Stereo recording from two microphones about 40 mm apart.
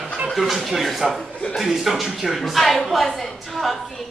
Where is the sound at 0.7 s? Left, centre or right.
Centre.